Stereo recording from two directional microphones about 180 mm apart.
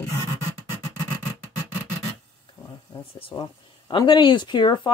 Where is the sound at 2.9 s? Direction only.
30° left (ahead or behind).